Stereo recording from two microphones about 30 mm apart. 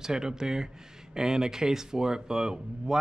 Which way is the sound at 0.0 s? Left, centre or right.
Right.